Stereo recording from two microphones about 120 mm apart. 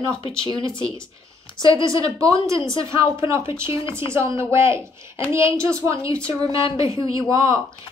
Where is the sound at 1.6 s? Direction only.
30° right (ahead or behind).